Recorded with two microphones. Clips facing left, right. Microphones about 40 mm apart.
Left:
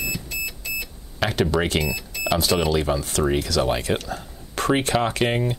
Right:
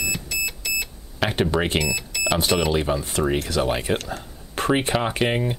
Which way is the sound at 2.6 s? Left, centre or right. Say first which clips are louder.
Even; right.